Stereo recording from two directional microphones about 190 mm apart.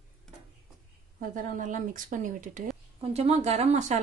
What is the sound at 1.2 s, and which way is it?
A woman's voice, 45° right (ahead or behind).